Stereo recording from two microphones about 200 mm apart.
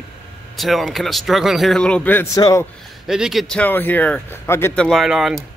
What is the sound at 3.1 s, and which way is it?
Speech, centre (ahead or behind).